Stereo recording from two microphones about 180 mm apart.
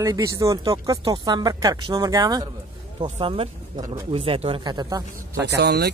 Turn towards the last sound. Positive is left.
turn(degrees=-65)  # may be behind; listen again after turning